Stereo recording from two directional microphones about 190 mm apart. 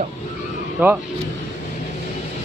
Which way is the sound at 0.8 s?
10° right (ahead or behind).